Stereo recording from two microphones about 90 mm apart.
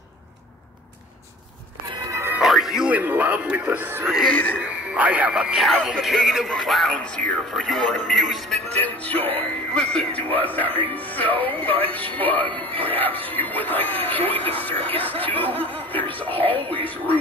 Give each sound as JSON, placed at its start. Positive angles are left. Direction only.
{"t": 2.0, "sound": "music", "side_deg": -30}
{"t": 2.4, "sound": "music", "side_deg": -5}
{"t": 2.9, "sound": "speech", "side_deg": -20}
{"t": 4.0, "sound": "speech", "side_deg": -5}
{"t": 4.3, "sound": "speech", "side_deg": 15}
{"t": 4.9, "sound": "speech", "side_deg": -15}
{"t": 8.6, "sound": "speech", "side_deg": 15}
{"t": 16.3, "sound": "speech", "side_deg": -80}
{"t": 16.8, "sound": "speech", "side_deg": 20}